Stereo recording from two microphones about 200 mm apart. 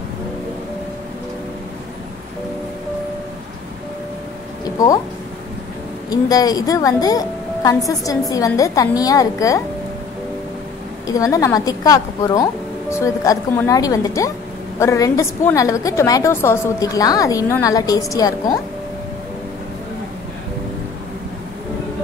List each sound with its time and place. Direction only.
4.6 s a sound: 15° left (ahead or behind)
6.0 s a woman's voice: 20° left (ahead or behind)
11.1 s a woman's voice: 15° left (ahead or behind)